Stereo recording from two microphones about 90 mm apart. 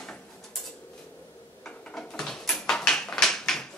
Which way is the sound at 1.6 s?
10° left (ahead or behind).